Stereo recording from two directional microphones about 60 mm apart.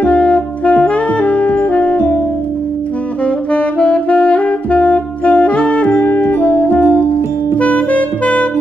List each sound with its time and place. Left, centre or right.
0.0 s saxophone: left
3.5 s saxophone: left